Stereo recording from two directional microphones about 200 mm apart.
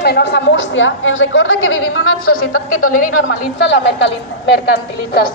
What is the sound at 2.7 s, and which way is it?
Speech, 45° left (ahead or behind).